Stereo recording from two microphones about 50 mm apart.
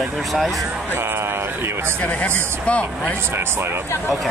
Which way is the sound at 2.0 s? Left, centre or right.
Left.